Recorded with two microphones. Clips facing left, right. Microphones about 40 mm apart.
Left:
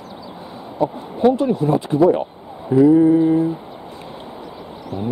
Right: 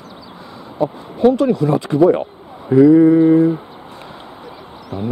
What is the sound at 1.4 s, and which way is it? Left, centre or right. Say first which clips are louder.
Speech: right 2 dB; right.